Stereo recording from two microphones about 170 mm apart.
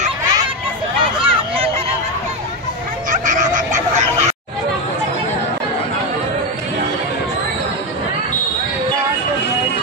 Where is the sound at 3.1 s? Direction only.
50° right (ahead or behind).